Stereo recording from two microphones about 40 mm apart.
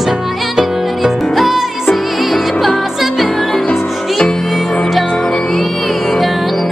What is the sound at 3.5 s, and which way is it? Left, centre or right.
Music, left.